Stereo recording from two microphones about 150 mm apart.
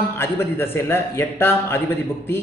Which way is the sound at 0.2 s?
15° left (ahead or behind).